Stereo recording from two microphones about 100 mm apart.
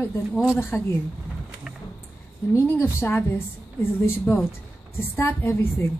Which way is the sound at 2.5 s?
20° left (ahead or behind).